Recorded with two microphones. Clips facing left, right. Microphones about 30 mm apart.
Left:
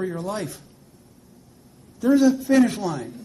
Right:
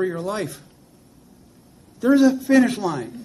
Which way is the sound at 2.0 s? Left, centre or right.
Right.